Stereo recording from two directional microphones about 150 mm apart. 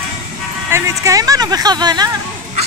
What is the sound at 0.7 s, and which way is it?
Speech, 20° right (ahead or behind).